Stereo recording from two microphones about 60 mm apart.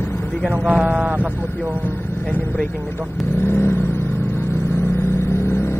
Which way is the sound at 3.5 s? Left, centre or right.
Left.